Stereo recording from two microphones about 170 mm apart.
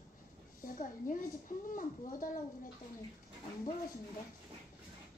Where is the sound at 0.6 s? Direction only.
50° left (ahead or behind).